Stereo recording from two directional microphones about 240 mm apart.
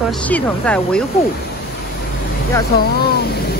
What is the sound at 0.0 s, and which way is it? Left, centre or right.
Speech, centre.